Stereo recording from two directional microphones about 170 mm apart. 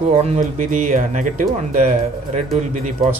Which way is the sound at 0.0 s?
40° right (ahead or behind).